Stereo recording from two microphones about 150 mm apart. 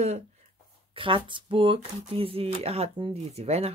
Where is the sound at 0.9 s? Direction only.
35° right (ahead or behind).